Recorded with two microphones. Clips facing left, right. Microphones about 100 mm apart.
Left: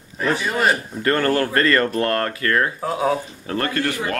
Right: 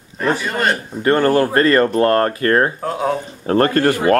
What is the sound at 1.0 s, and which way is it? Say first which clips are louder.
Speech: right 8 dB; 25° right (ahead or behind).